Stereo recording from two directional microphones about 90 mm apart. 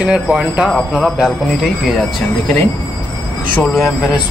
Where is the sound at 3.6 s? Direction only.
Centre (ahead or behind).